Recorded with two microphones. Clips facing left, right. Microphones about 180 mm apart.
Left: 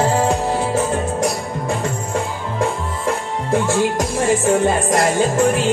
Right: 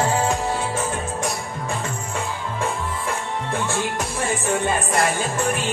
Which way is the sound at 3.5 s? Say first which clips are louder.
Left 9 dB; 40° left (ahead or behind).